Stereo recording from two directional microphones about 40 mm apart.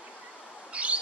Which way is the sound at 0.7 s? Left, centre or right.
Right.